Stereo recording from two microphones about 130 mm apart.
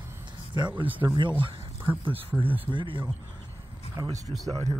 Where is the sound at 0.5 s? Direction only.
40° right (ahead or behind).